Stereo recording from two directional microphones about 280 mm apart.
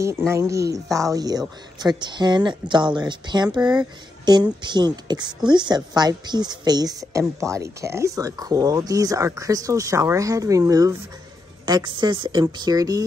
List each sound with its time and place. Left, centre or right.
0.3 s a woman's voice: centre